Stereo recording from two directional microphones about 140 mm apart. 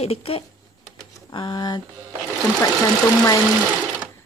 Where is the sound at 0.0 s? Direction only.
45° left (ahead or behind).